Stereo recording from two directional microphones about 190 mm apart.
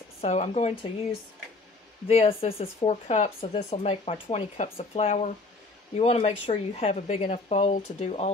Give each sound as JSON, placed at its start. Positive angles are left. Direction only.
{"t": 0.2, "sound": "speech", "side_deg": 35}
{"t": 2.0, "sound": "speech", "side_deg": 30}